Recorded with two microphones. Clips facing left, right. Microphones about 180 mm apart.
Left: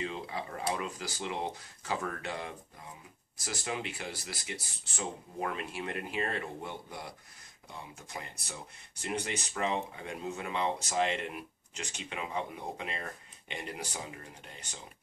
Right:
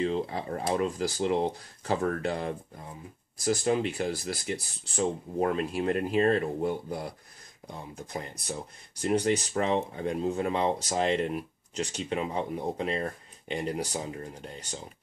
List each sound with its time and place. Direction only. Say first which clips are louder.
0.0 s speech: right 8 dB; 40° right (ahead or behind)